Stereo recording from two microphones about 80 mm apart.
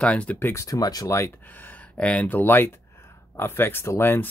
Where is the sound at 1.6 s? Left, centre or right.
Centre.